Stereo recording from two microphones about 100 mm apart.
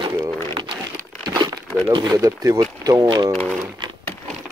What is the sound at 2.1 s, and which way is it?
Speech, 35° right (ahead or behind).